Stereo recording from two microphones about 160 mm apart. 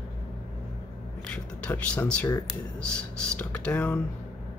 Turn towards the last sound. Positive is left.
turn(degrees=10)  # may be behind; listen again after turning